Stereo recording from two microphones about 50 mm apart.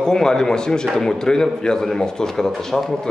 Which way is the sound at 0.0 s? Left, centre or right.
Centre.